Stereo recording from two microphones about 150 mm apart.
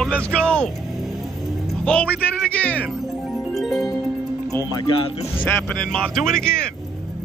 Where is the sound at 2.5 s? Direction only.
10° left (ahead or behind).